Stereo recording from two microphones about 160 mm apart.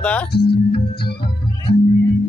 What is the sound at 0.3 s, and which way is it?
Music, 90° left.